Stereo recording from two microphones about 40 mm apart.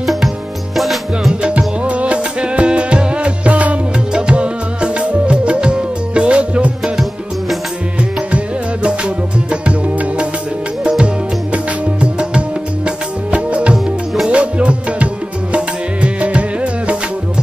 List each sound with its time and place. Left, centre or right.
0.0 s music: centre
1.9 s music: right
6.8 s music: centre
8.8 s music: right
10.8 s music: centre